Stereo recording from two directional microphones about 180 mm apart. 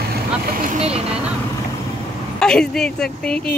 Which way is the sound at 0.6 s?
35° right (ahead or behind).